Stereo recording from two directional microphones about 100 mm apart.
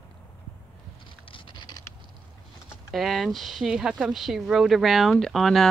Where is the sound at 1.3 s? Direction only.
50° left (ahead or behind).